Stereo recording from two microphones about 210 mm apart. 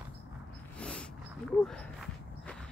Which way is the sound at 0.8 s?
5° left (ahead or behind).